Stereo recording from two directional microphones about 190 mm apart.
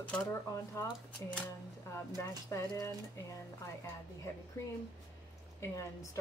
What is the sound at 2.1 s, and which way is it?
Speech, 15° left (ahead or behind).